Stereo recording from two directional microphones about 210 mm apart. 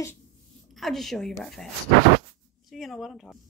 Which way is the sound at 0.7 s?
Centre (ahead or behind).